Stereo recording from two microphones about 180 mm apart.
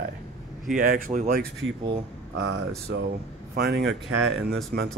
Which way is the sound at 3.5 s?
65° right (ahead or behind).